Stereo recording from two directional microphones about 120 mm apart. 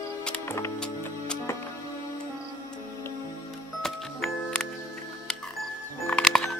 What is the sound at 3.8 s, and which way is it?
Music, 5° left (ahead or behind).